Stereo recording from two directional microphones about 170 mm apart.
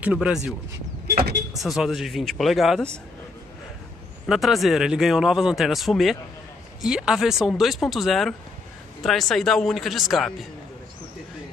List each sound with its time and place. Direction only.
0.0 s speech: 5° right (ahead or behind)
1.0 s vehicle: 65° right (ahead or behind)
1.5 s speech: centre (ahead or behind)
4.3 s speech: centre (ahead or behind)